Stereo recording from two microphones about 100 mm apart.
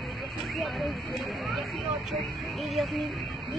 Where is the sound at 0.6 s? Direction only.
Centre (ahead or behind).